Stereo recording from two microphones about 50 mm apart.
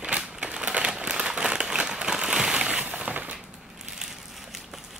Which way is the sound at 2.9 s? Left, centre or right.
Right.